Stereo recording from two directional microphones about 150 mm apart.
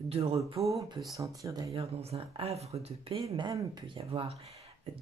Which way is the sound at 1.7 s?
40° right (ahead or behind).